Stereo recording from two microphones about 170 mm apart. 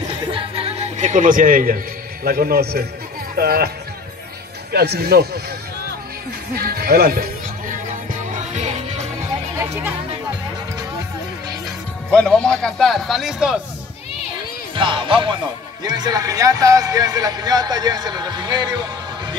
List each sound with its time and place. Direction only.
0.2 s music: 30° right (ahead or behind); by 1.8 s 55° right (ahead or behind)
2.2 s a man's voice: 60° right (ahead or behind)
4.7 s speech: 70° right (ahead or behind)
6.5 s music: 65° right (ahead or behind); by 9.0 s 40° right (ahead or behind)
12.1 s a man's voice: 5° left (ahead or behind)
14.8 s speech: 30° right (ahead or behind)